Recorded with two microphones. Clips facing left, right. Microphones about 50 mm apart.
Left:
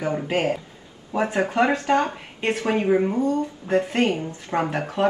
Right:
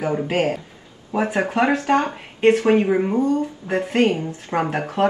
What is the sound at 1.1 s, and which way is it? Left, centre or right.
Speech, right.